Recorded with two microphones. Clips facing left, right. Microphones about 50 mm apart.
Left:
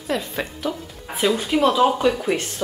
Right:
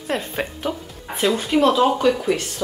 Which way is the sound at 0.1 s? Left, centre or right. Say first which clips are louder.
Even; right.